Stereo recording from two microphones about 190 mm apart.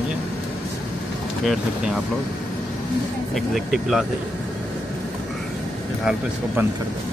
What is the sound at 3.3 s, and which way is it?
Speech, centre (ahead or behind).